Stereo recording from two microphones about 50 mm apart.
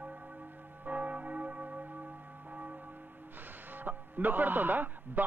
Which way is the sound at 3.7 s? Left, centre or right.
Right.